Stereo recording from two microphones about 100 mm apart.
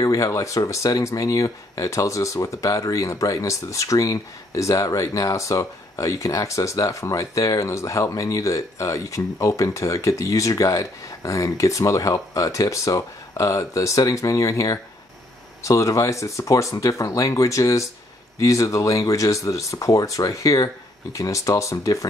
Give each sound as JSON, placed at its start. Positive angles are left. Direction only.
{"t": 0.0, "sound": "speech", "side_deg": 35}